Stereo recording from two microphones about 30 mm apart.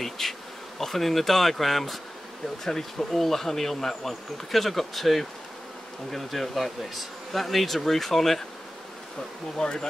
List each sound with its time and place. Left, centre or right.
0.0 s bee: centre
2.6 s speech: centre
9.6 s speech: left